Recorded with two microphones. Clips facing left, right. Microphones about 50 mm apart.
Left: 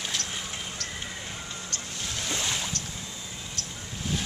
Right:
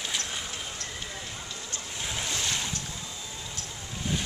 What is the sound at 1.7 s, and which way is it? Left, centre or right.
Boat, centre.